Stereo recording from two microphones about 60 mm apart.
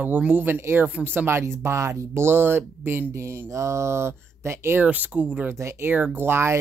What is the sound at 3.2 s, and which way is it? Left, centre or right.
Speech, right.